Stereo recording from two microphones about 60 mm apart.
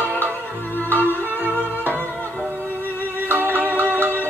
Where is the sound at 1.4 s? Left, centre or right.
Right.